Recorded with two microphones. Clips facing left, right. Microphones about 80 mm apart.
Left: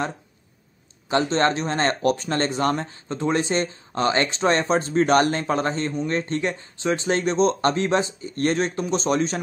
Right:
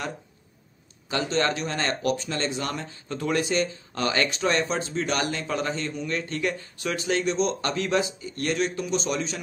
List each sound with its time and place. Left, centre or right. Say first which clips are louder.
1.1 s speech: left 5 dB; left